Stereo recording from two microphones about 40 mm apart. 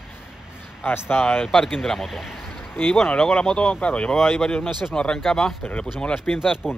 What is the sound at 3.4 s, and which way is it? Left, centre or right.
Speech, left.